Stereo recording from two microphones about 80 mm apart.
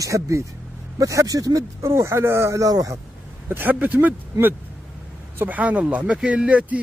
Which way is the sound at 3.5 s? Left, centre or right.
Right.